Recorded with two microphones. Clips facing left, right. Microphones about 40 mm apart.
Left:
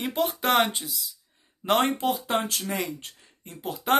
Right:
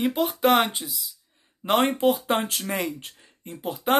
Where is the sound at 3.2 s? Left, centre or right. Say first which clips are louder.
Right 6 dB; centre.